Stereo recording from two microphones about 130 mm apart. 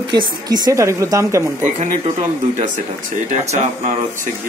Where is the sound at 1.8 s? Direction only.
65° right (ahead or behind).